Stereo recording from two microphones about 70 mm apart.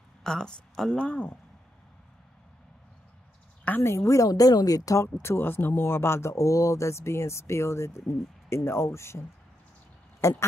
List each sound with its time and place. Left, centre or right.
0.2 s speech: centre
0.9 s speech: left
3.8 s a woman's voice: left
5.2 s speech: left
10.2 s speech: left